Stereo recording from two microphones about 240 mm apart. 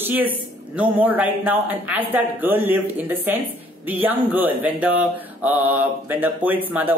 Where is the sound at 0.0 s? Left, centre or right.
Centre.